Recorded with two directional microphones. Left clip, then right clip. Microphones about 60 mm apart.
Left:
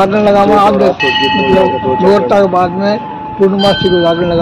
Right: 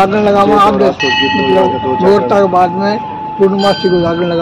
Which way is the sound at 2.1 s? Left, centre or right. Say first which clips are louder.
Even; centre.